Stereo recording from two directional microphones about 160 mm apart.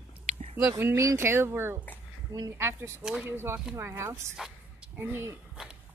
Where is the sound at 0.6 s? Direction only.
15° right (ahead or behind).